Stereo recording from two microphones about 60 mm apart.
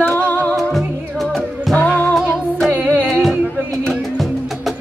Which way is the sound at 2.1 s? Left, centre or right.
Centre.